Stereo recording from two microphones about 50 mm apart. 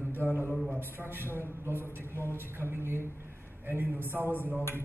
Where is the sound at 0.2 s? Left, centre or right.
Right.